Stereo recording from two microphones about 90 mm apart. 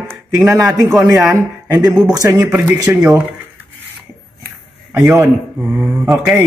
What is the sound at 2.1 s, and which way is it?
Speech, 40° right (ahead or behind).